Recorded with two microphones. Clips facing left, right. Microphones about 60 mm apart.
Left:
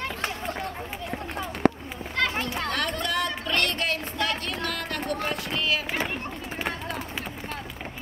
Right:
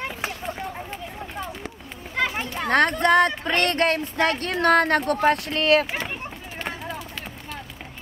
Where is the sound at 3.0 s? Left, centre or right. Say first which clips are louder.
Right 10 dB; right.